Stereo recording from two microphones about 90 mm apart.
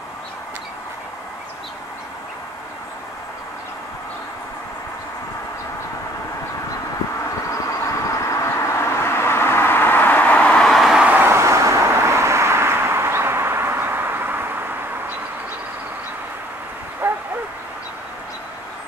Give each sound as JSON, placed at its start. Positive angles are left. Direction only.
{"t": 8.1, "sound": "vehicle", "side_deg": 35}
{"t": 11.1, "sound": "vehicle", "side_deg": -25}
{"t": 17.0, "sound": "bow-wow", "side_deg": -20}